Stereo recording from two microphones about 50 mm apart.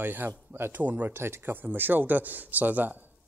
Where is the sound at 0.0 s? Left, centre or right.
Right.